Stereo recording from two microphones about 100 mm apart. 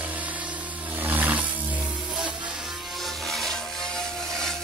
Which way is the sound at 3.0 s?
Centre (ahead or behind).